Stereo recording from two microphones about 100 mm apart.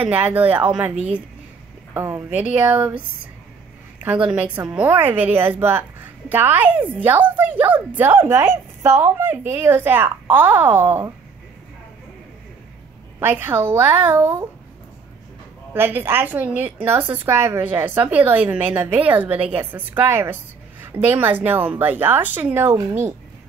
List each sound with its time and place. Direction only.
0.0 s speech: 15° right (ahead or behind)
2.0 s a woman's voice: 25° right (ahead or behind)
4.0 s a woman's voice: 15° right (ahead or behind)
13.2 s a woman's voice: 20° right (ahead or behind)
15.7 s a woman's voice: 20° right (ahead or behind)